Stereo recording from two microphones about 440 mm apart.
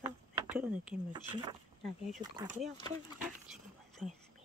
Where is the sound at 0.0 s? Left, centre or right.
Centre.